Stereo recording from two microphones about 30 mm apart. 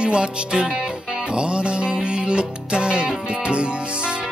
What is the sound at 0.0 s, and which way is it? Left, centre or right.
Music, right.